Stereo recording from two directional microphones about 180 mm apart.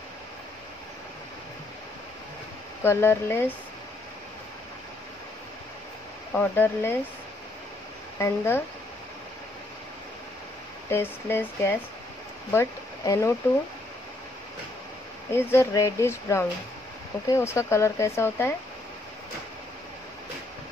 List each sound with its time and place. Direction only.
2.8 s speech: 15° left (ahead or behind)
6.3 s speech: 10° left (ahead or behind)
8.2 s speech: 15° left (ahead or behind)
10.9 s speech: 15° left (ahead or behind)
15.3 s speech: 15° left (ahead or behind)